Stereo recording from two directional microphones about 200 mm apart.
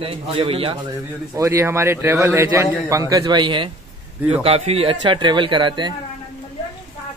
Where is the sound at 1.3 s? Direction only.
15° right (ahead or behind).